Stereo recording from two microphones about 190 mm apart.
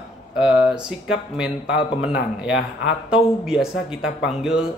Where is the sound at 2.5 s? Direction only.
70° left (ahead or behind).